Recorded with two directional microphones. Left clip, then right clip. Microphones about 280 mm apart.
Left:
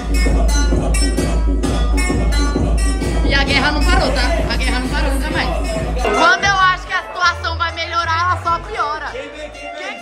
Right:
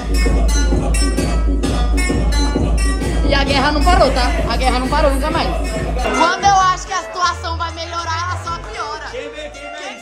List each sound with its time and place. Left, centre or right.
0.2 s music: centre
6.2 s music: centre